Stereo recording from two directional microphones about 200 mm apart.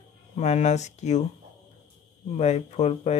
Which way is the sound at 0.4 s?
35° left (ahead or behind).